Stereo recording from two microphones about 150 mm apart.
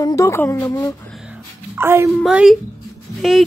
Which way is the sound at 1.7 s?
15° right (ahead or behind).